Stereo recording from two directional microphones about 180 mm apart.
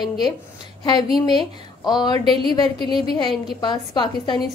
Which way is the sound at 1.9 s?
25° left (ahead or behind).